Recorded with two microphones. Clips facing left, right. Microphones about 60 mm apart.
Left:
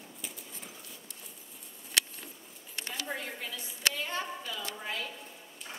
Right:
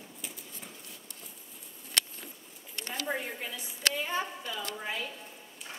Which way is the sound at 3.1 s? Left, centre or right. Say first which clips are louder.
Right 6 dB; centre.